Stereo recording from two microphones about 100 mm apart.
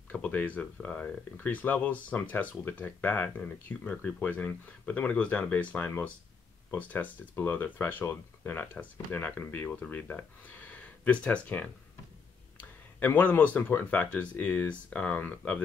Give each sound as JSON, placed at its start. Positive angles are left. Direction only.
{"t": 0.1, "sound": "speech", "side_deg": 15}